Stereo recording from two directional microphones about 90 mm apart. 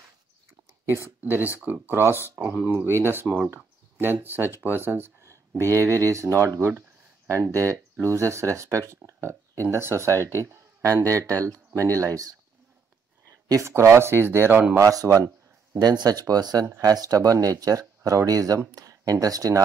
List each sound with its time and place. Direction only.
1.2 s speech: 20° right (ahead or behind); by 12.4 s 40° right (ahead or behind)
13.5 s speech: 35° right (ahead or behind)
14.9 s speech: 40° right (ahead or behind)